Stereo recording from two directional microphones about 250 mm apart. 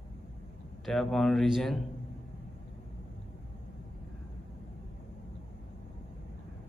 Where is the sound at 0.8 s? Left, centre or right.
Centre.